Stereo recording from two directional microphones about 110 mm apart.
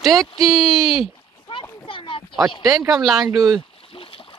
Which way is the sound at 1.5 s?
50° left (ahead or behind).